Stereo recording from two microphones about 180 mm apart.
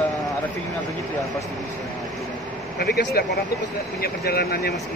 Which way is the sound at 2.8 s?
60° left (ahead or behind).